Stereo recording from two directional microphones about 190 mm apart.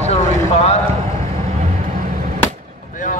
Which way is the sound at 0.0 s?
35° left (ahead or behind).